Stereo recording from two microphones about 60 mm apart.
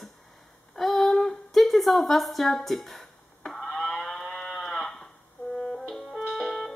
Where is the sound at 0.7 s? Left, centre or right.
Centre.